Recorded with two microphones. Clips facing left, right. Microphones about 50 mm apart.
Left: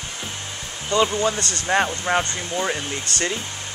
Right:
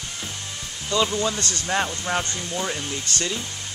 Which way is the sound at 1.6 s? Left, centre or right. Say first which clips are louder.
Left 5 dB; left.